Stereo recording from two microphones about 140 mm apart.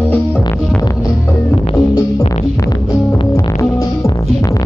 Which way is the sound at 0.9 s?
20° left (ahead or behind).